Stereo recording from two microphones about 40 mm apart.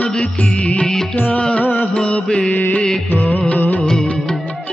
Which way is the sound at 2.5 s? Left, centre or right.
Left.